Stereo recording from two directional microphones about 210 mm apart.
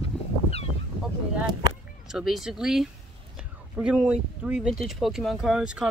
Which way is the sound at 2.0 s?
Centre (ahead or behind).